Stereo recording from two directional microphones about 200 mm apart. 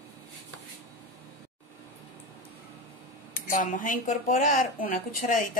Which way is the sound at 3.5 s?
40° left (ahead or behind).